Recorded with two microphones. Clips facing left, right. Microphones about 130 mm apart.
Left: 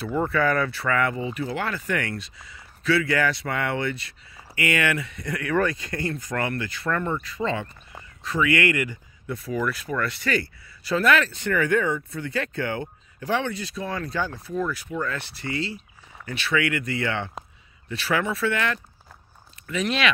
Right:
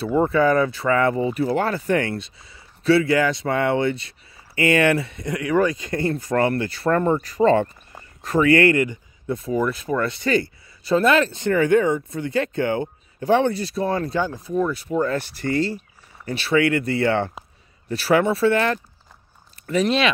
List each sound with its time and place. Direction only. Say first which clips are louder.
0.0 s speech: right 5 dB; 25° right (ahead or behind)
5.2 s speech: right 3 dB; 20° right (ahead or behind)
14.8 s speech: right 7 dB; 35° right (ahead or behind)
16.3 s speech: right 6 dB; 30° right (ahead or behind)